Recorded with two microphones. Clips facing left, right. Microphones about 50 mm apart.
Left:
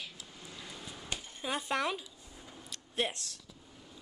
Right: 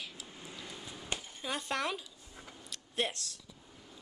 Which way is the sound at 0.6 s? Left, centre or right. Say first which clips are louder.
Left 1 dB; centre.